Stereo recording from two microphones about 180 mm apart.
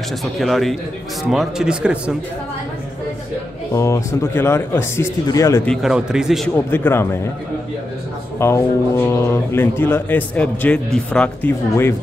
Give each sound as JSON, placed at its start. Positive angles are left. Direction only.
{"t": 0.2, "sound": "a man's voice", "side_deg": 0}
{"t": 3.7, "sound": "a man's voice", "side_deg": 15}
{"t": 5.7, "sound": "a man's voice", "side_deg": 0}
{"t": 6.5, "sound": "a man's voice", "side_deg": 10}
{"t": 8.4, "sound": "a man's voice", "side_deg": 15}